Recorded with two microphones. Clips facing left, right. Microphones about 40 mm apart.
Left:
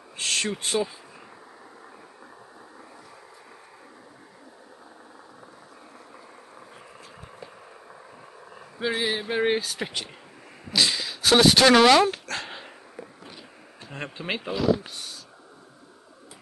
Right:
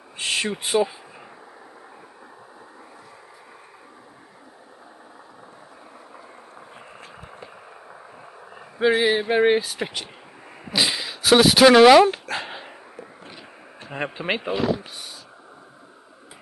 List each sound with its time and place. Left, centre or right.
0.2 s speech: centre
8.5 s speech: right
10.7 s dog: centre
13.8 s speech: centre